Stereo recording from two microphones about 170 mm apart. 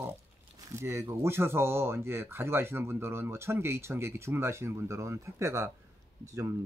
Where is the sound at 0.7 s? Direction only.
15° right (ahead or behind).